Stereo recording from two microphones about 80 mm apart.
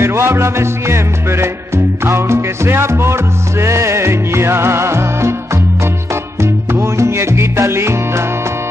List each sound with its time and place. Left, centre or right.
0.0 s music: right
6.4 s music: right